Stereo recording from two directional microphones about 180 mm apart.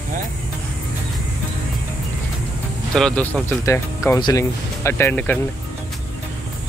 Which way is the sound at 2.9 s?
5° left (ahead or behind).